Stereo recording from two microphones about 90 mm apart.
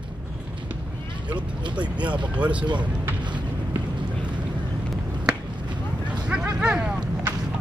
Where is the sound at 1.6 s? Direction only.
60° right (ahead or behind).